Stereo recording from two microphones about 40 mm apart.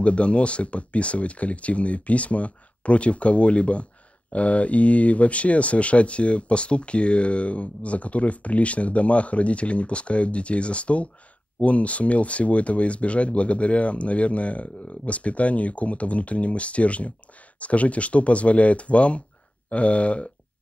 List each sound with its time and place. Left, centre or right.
0.0 s speech: left